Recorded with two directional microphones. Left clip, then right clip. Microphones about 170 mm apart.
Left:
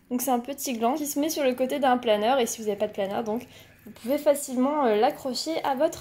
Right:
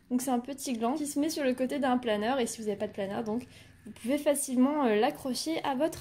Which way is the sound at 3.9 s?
15° right (ahead or behind).